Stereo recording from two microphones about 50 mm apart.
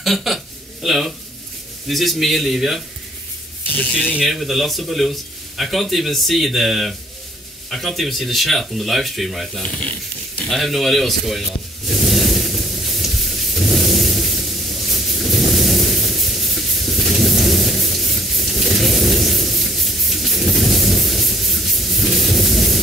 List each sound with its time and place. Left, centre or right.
0.0 s a man's voice: centre
3.7 s speech: left
4.2 s speech: centre
10.5 s speech: centre
11.9 s a sound: centre